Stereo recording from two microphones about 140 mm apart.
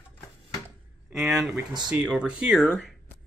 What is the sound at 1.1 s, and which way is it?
Speech, centre (ahead or behind).